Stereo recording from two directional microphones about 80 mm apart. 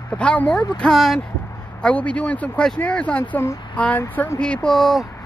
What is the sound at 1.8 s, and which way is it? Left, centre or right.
Speech, centre.